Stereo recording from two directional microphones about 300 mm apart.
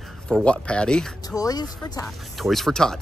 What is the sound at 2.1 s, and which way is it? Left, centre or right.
Speech, centre.